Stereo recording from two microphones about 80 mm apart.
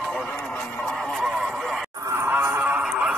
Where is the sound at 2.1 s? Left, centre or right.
Right.